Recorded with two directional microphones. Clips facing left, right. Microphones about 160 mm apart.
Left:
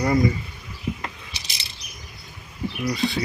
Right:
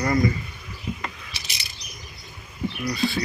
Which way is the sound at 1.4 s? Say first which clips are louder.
Right 1 dB; 30° left (ahead or behind).